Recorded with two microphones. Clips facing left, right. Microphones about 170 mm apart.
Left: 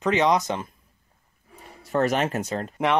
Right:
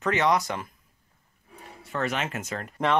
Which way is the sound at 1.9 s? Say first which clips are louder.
Left 7 dB; 40° left (ahead or behind).